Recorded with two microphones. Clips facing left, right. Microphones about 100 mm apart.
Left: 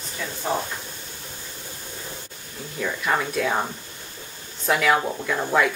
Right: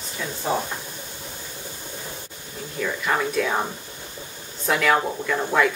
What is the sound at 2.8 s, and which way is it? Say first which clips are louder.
Speech: even; centre (ahead or behind).